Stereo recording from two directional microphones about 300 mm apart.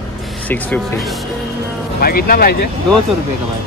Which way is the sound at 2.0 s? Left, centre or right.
Left.